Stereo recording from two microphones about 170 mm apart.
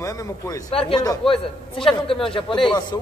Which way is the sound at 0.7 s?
35° left (ahead or behind).